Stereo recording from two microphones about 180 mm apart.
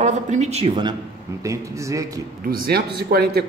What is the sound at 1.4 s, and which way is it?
Speech, 15° right (ahead or behind).